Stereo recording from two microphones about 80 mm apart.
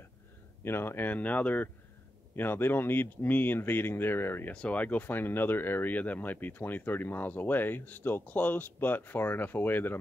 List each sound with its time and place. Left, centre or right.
0.7 s speech: left
4.6 s speech: centre